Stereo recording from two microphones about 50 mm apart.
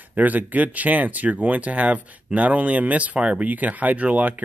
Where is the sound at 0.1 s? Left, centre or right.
Right.